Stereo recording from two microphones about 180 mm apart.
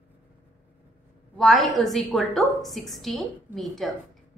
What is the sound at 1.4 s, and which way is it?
A woman's voice, centre (ahead or behind).